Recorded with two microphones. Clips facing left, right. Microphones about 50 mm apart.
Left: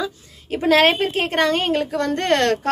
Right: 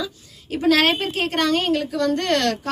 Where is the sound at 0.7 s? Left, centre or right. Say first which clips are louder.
Left 2 dB; left.